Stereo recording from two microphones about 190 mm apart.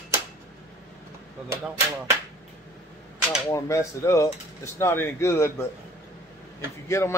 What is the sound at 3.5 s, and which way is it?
Speech, 15° left (ahead or behind).